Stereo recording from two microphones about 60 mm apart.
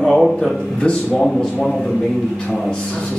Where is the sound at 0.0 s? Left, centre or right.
Centre.